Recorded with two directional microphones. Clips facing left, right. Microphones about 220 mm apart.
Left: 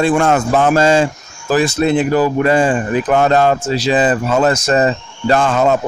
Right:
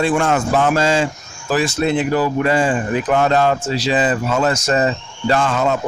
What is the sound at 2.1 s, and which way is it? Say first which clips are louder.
Speech: left 4 dB; 50° left (ahead or behind).